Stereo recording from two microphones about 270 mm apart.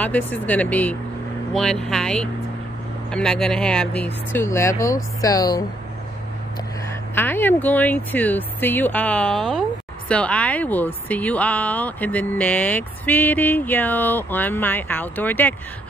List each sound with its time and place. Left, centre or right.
0.0 s speech: centre
7.2 s speech: centre